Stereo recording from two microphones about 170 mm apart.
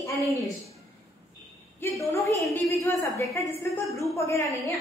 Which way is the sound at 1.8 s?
15° left (ahead or behind).